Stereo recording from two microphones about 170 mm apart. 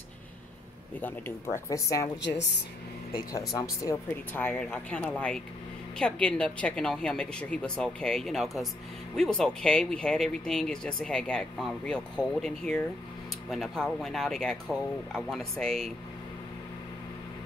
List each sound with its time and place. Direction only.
1.0 s speech: 15° left (ahead or behind)
3.3 s speech: 20° left (ahead or behind); by 15.9 s centre (ahead or behind)